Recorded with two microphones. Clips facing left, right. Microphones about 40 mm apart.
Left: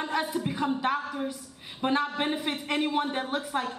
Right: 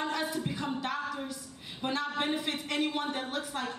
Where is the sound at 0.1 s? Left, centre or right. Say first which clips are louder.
Left 4 dB; left.